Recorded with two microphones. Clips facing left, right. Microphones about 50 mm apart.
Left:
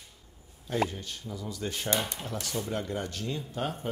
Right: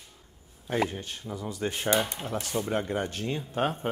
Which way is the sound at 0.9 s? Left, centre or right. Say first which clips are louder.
Right 3 dB; right.